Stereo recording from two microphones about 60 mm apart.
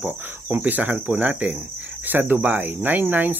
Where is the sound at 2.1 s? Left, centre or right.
Right.